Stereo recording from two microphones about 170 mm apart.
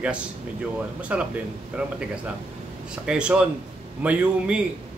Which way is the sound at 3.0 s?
5° right (ahead or behind).